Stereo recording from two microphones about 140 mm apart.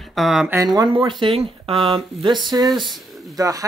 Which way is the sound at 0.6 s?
30° right (ahead or behind).